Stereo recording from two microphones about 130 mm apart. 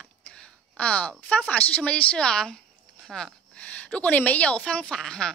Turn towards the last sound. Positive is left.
turn(degrees=5)  # may be behind; listen again after turning